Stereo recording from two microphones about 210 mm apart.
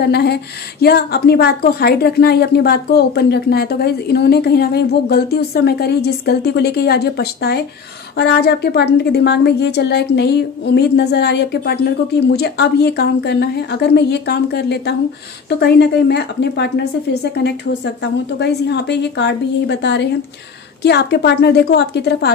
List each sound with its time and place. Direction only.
0.0 s a woman's voice: 50° left (ahead or behind)